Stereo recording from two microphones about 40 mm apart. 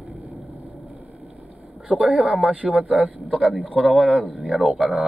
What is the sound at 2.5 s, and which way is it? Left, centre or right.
Speech, right.